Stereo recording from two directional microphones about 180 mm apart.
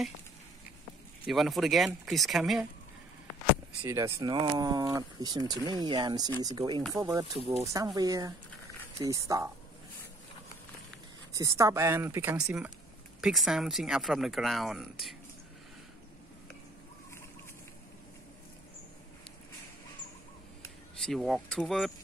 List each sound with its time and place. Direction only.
1.2 s speech: centre (ahead or behind)
3.8 s speech: 15° right (ahead or behind)
11.3 s speech: 15° right (ahead or behind); by 15.1 s centre (ahead or behind)
20.9 s speech: centre (ahead or behind)